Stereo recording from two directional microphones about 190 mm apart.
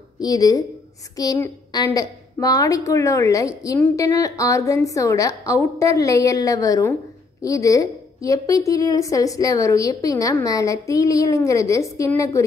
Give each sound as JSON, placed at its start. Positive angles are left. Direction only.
{"t": 0.2, "sound": "a woman's voice", "side_deg": 20}